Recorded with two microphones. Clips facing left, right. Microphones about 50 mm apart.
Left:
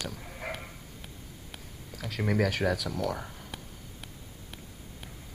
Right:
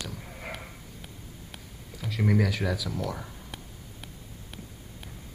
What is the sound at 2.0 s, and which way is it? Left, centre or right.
Speech, left.